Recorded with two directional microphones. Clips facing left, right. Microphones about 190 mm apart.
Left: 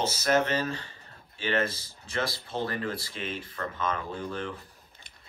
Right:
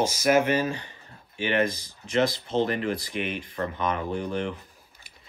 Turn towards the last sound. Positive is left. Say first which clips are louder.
# right 5 dB
turn(degrees=-20)  # may be behind; listen again after turning